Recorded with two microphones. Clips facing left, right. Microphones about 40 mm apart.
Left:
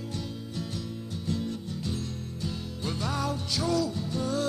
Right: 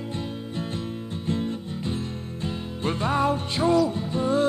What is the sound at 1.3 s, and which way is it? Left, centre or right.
Music, right.